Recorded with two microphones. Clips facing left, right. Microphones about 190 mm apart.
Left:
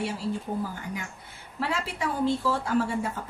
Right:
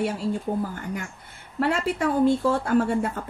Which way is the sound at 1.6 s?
55° right (ahead or behind).